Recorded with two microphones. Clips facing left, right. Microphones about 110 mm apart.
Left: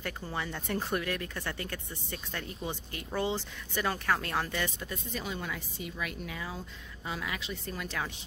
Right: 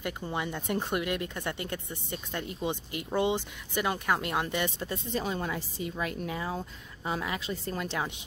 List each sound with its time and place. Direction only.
0.0 s a woman's voice: 15° right (ahead or behind)
4.7 s a woman's voice: 30° right (ahead or behind)